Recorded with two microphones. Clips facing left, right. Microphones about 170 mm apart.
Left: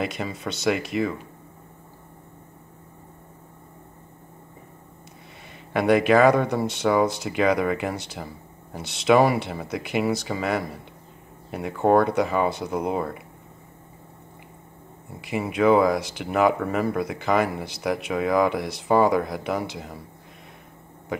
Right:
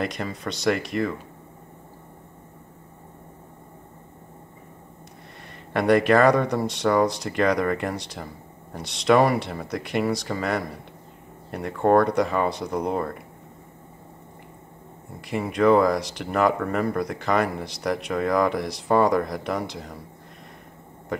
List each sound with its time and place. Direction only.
0.0 s speech: centre (ahead or behind)
5.5 s speech: centre (ahead or behind)
15.1 s speech: centre (ahead or behind)
21.1 s speech: centre (ahead or behind)